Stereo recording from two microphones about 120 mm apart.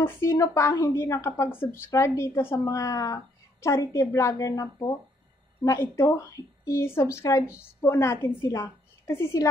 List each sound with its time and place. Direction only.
0.0 s a woman's voice: 25° left (ahead or behind)